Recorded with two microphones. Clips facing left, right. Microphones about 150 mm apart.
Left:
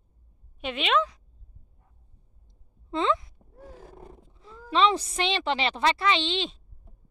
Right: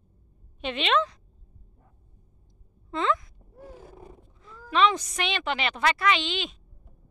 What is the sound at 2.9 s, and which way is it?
Speech, 25° left (ahead or behind).